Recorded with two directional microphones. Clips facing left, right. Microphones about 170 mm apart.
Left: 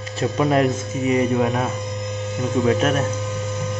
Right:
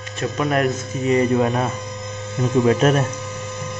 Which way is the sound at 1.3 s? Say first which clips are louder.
Right 1 dB; centre (ahead or behind).